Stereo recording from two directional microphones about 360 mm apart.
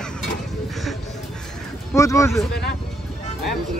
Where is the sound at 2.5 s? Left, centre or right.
Left.